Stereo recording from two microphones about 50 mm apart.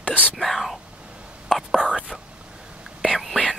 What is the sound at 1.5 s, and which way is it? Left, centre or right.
Whispering, centre.